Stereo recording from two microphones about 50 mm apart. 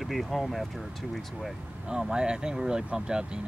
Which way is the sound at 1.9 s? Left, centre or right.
Centre.